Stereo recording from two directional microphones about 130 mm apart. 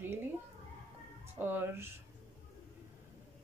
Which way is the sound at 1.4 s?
15° right (ahead or behind).